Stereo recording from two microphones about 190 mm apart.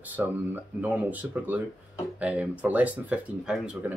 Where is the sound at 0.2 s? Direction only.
10° right (ahead or behind).